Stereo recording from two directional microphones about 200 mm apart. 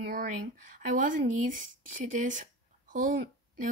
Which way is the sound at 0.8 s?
40° right (ahead or behind).